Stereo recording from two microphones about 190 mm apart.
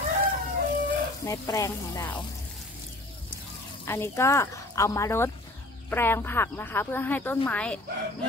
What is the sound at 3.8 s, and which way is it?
Speech, 15° left (ahead or behind).